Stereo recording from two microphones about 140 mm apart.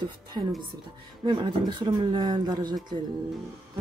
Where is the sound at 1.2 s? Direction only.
35° right (ahead or behind).